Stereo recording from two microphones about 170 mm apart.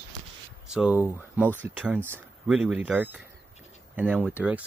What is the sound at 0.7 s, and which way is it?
Speech, 5° right (ahead or behind).